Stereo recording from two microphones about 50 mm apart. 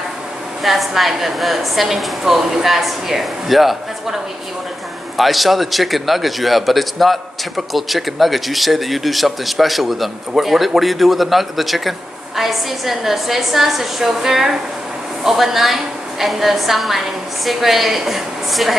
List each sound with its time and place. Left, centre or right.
0.7 s a man's voice: centre